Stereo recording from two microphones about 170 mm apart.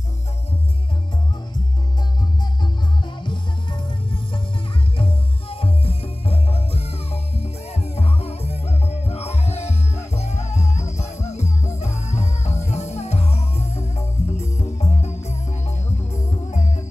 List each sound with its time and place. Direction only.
3.2 s music: 30° left (ahead or behind); by 16.8 s 45° left (ahead or behind)